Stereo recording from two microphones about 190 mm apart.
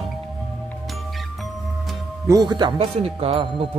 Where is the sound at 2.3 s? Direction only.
20° right (ahead or behind).